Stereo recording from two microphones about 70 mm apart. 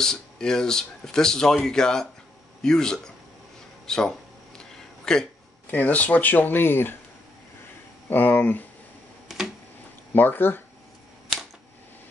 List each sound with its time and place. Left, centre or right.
0.0 s speech: centre
5.7 s speech: left
8.1 s speech: left
10.1 s speech: left